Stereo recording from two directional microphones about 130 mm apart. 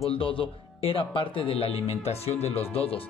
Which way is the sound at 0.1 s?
45° left (ahead or behind).